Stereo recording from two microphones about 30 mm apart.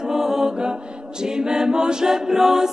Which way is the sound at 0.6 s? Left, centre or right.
Right.